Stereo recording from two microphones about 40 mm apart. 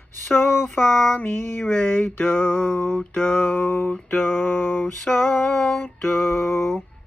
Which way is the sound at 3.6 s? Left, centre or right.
Left.